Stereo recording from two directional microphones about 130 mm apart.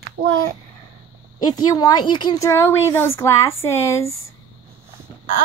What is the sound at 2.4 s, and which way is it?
Speech, 20° left (ahead or behind).